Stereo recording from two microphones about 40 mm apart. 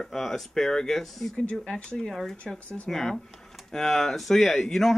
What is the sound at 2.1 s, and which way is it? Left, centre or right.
Speech, centre.